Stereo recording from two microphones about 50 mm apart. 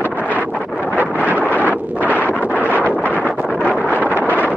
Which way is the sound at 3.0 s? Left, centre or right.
Left.